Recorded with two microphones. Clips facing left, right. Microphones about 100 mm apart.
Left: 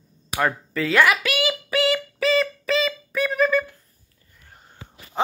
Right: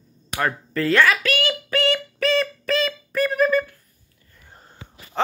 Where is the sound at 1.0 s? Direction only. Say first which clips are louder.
Left 3 dB; 15° left (ahead or behind).